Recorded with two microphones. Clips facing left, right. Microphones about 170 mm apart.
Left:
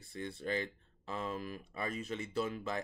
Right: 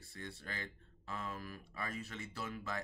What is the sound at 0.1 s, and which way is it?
Speech, 20° left (ahead or behind).